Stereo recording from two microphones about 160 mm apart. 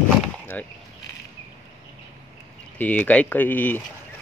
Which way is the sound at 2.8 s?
10° left (ahead or behind).